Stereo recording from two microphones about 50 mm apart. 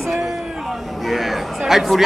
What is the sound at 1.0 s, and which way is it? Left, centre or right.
Speech, centre.